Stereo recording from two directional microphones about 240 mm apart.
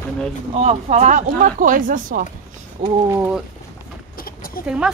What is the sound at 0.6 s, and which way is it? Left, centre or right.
Speech, right.